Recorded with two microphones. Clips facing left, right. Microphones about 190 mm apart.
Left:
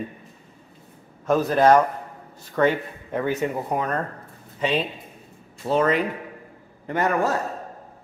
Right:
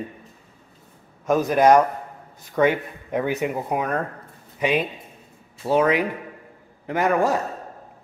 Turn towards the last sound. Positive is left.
turn(degrees=-10)  # may be behind; listen again after turning